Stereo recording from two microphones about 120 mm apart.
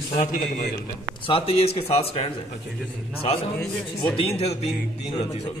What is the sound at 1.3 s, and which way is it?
A man's voice, 55° left (ahead or behind).